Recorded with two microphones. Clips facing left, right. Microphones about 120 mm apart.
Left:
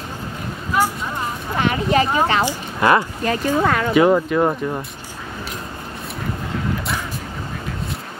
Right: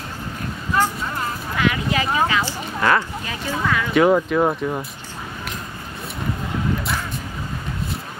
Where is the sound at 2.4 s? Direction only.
15° left (ahead or behind).